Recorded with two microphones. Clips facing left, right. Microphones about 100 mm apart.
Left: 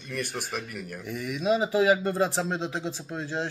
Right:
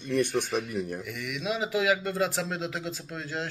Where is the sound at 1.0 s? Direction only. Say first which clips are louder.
Left 6 dB; 35° left (ahead or behind).